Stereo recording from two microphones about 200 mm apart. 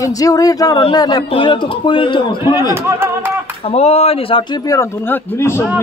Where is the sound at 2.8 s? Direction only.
10° right (ahead or behind).